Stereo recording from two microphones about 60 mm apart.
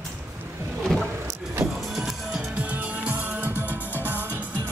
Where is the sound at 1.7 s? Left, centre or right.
Centre.